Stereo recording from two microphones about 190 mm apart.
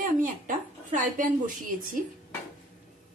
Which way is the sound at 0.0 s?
45° right (ahead or behind).